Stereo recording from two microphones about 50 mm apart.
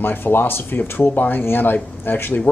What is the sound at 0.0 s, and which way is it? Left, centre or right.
Speech, left.